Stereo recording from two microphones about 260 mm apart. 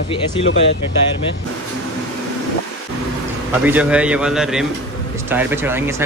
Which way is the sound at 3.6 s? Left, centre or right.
Centre.